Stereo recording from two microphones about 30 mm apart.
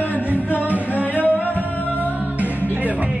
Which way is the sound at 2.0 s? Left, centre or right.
Right.